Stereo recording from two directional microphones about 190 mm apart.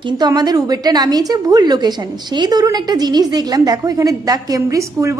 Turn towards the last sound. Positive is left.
turn(degrees=-15)  # may be behind; listen again after turning